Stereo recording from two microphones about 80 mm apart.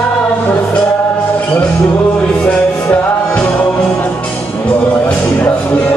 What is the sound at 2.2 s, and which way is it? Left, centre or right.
Music, centre.